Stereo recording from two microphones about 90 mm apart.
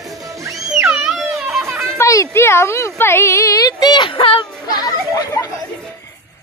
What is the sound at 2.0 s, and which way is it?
Speech, 35° left (ahead or behind).